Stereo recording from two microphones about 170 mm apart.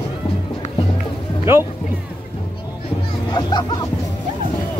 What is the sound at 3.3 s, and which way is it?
Speech, 25° left (ahead or behind).